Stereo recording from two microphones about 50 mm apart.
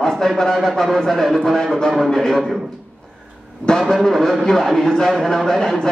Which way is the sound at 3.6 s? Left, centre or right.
Centre.